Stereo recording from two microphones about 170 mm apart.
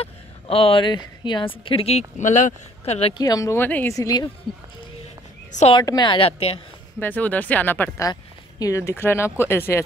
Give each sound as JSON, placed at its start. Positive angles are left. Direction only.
{"t": 0.0, "sound": "a woman's voice", "side_deg": 35}
{"t": 3.2, "sound": "speech", "side_deg": 20}
{"t": 5.5, "sound": "a woman's voice", "side_deg": 40}
{"t": 5.8, "sound": "speech", "side_deg": 25}
{"t": 7.0, "sound": "speech", "side_deg": 10}